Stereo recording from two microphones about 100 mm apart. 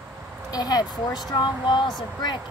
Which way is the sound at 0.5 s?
40° left (ahead or behind).